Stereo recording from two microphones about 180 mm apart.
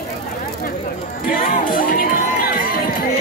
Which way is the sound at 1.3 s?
50° left (ahead or behind).